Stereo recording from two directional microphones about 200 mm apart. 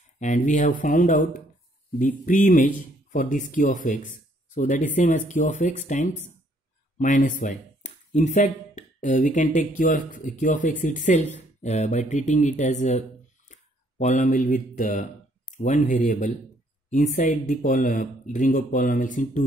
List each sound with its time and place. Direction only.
0.2 s speech: 35° left (ahead or behind)